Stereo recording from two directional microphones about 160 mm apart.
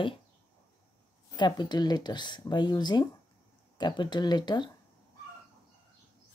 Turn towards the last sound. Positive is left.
turn(degrees=25)  # may be behind; listen again after turning